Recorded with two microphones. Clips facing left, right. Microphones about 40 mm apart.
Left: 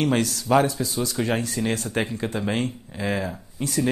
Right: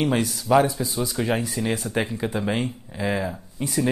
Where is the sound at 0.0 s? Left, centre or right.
Centre.